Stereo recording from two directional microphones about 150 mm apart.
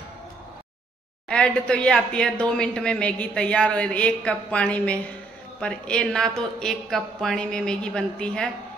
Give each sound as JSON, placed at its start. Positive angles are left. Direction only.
{"t": 1.3, "sound": "a man's voice", "side_deg": 5}